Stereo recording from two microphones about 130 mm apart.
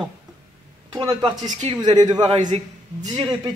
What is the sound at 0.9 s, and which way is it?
A man's voice, 35° right (ahead or behind).